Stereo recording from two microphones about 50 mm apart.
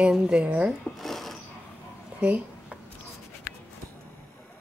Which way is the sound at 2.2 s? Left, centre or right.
Right.